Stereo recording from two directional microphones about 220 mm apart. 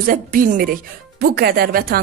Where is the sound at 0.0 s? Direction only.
40° right (ahead or behind).